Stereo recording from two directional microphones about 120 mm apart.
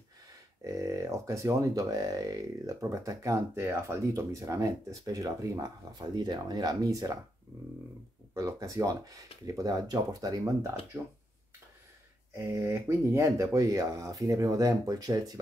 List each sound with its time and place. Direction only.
0.7 s speech: 25° right (ahead or behind)
8.4 s speech: 30° right (ahead or behind)
12.4 s speech: 25° right (ahead or behind)